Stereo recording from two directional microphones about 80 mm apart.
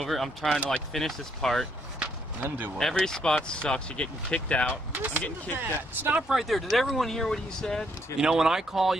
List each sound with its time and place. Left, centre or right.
0.0 s speech: centre
2.4 s speech: right
2.8 s speech: centre
4.9 s speech: right
6.2 s speech: centre
8.2 s speech: centre